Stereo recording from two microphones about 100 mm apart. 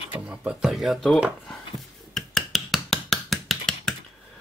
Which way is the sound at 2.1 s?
Centre (ahead or behind).